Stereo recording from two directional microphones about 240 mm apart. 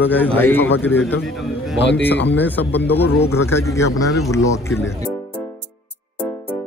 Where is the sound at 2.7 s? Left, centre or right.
Left.